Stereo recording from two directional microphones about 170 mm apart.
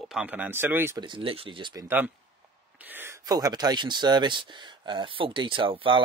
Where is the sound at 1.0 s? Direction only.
30° right (ahead or behind).